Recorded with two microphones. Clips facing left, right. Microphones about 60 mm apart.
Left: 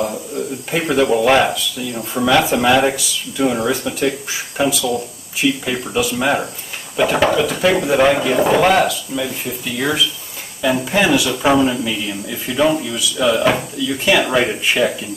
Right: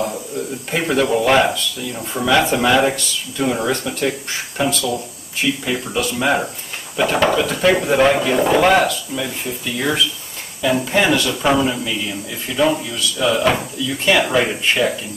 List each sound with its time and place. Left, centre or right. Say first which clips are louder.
0.7 s speech: left 2 dB; centre